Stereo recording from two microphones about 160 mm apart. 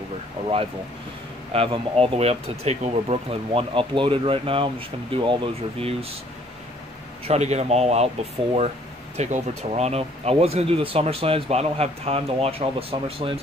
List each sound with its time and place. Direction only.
1.5 s speech: 35° right (ahead or behind)
7.2 s speech: 45° right (ahead or behind)